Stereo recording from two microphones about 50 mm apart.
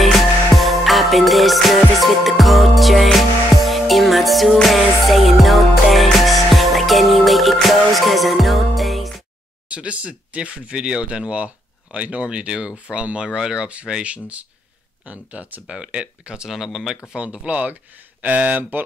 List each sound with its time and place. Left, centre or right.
0.0 s music: centre
9.7 s speech: right
16.4 s speech: centre
17.1 s speech: right